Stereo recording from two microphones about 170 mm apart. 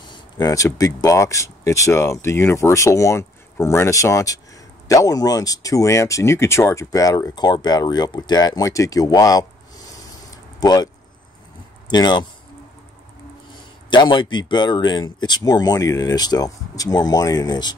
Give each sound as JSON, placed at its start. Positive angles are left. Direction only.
{"t": 0.1, "sound": "speech", "side_deg": 20}
{"t": 10.3, "sound": "a sound", "side_deg": 20}
{"t": 11.9, "sound": "speech", "side_deg": 25}
{"t": 13.8, "sound": "speech", "side_deg": 25}